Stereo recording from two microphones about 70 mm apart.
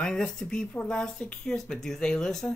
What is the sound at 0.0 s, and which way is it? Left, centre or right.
Speech, centre.